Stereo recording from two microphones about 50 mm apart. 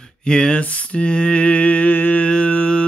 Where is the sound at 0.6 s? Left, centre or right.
Left.